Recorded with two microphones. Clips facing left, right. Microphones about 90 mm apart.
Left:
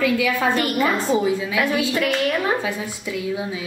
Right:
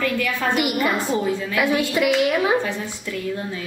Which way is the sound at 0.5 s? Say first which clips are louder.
Even; 15° right (ahead or behind).